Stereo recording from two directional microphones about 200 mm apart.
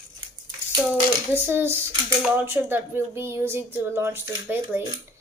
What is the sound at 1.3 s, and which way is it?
Speech, 10° right (ahead or behind).